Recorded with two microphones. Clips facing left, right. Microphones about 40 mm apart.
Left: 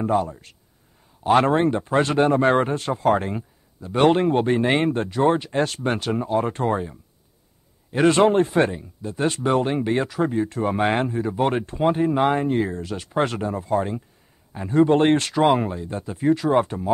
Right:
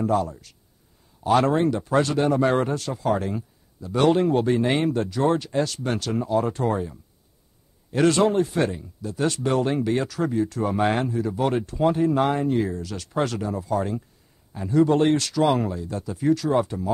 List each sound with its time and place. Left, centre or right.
0.0 s a man's voice: left
8.2 s speech: left
12.9 s speech: left
16.6 s speech: left